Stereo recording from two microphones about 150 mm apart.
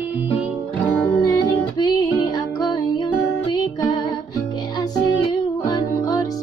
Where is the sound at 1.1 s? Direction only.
25° left (ahead or behind).